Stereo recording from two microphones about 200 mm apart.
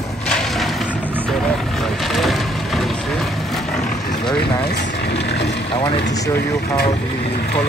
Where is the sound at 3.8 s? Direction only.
40° left (ahead or behind).